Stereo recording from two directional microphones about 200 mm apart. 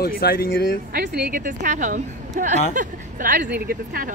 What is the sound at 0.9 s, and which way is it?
Speech, 45° right (ahead or behind).